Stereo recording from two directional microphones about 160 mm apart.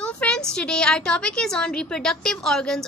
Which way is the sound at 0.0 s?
5° left (ahead or behind).